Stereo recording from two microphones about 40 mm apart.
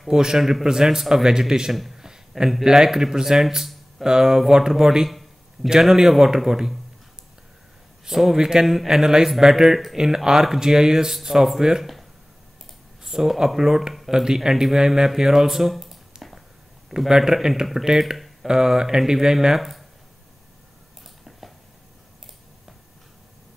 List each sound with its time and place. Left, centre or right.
0.1 s a man's voice: centre
2.0 s a sound: centre
2.6 s a man's voice: centre
8.0 s a man's voice: centre
11.8 s a sound: centre
13.0 s a man's voice: centre
17.1 s a man's voice: centre
18.1 s a sound: centre
18.5 s a man's voice: centre